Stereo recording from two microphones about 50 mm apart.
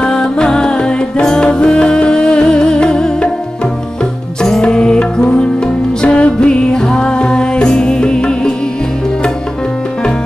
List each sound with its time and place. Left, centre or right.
0.0 s music: centre
4.4 s music: centre
6.0 s music: left
6.7 s music: centre